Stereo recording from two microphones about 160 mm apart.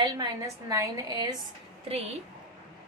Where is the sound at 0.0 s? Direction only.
25° right (ahead or behind).